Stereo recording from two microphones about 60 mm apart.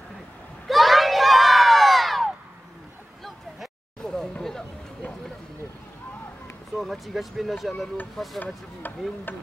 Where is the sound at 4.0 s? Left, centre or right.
Centre.